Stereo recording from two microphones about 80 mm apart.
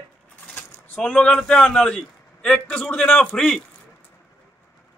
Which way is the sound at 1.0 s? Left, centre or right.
Centre.